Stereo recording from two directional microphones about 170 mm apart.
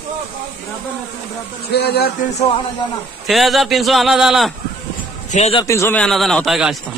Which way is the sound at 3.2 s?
Centre (ahead or behind).